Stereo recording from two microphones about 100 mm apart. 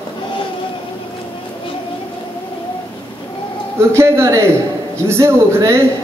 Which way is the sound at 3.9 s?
30° right (ahead or behind).